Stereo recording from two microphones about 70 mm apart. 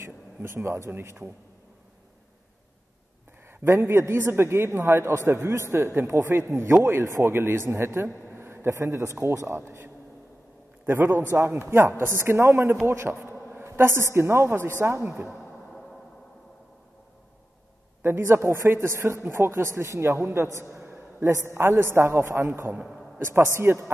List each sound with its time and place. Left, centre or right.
0.0 s a man's voice: right
3.4 s a man's voice: right
10.9 s a man's voice: right
18.0 s a man's voice: right
20.6 s a sound: right
21.5 s a man's voice: right